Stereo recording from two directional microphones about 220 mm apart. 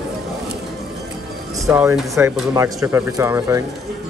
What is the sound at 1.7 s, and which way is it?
Speech, 5° right (ahead or behind).